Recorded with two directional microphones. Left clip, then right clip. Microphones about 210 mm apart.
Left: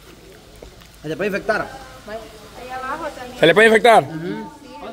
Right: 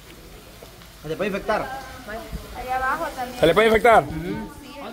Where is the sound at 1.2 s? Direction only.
60° left (ahead or behind).